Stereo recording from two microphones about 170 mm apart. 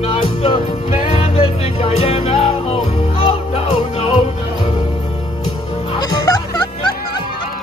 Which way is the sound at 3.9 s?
35° left (ahead or behind).